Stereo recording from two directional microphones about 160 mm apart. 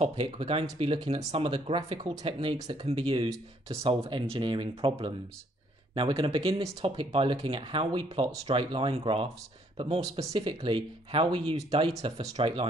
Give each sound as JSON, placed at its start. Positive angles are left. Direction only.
{"t": 0.0, "sound": "speech", "side_deg": -35}